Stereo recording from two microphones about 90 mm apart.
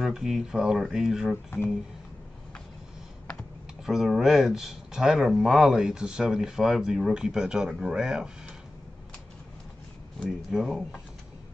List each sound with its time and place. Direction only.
0.0 s speech: centre (ahead or behind)
1.3 s speech: 25° left (ahead or behind)
3.8 s speech: 5° right (ahead or behind)
10.5 s speech: centre (ahead or behind)